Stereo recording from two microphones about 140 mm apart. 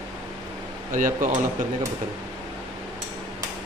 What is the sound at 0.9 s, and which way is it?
Speech, 70° right (ahead or behind).